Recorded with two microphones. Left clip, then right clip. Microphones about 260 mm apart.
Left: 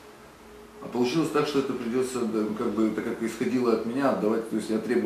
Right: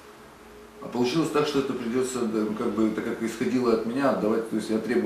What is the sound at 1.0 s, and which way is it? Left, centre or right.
Speech, centre.